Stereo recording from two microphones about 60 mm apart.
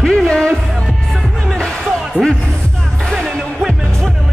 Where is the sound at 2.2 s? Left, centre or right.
Right.